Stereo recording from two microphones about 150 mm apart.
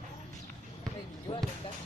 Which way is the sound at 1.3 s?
40° left (ahead or behind).